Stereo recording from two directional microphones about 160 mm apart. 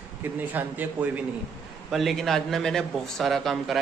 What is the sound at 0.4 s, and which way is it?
Speech, 10° right (ahead or behind).